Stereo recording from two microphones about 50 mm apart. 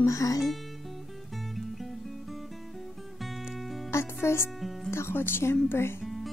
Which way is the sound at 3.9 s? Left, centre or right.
Left.